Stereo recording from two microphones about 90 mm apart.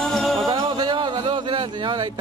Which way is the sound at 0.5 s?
55° right (ahead or behind).